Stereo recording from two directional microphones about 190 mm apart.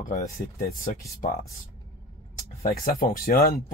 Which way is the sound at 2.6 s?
50° left (ahead or behind).